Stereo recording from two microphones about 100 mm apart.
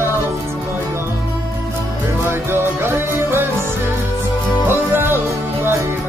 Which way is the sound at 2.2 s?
25° right (ahead or behind).